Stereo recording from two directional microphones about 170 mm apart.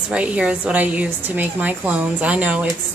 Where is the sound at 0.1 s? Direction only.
5° right (ahead or behind).